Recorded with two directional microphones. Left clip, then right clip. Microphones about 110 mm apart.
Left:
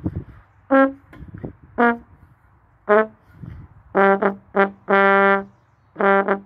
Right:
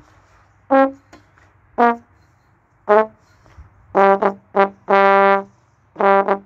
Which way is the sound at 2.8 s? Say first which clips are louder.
Right 2 dB; 40° left (ahead or behind).